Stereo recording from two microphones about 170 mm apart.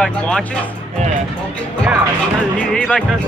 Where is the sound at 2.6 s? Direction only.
5° left (ahead or behind).